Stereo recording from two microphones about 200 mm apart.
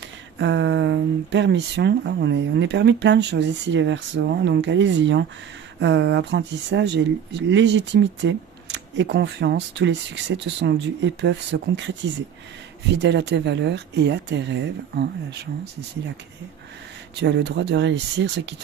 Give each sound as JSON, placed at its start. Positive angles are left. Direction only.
{"t": 0.4, "sound": "speech", "side_deg": -65}
{"t": 17.2, "sound": "speech", "side_deg": -60}